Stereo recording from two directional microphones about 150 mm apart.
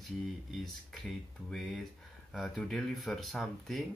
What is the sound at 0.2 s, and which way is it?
Speech, centre (ahead or behind).